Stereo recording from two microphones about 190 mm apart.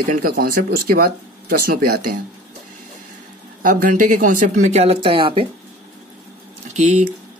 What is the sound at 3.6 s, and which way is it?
Speech, 45° right (ahead or behind).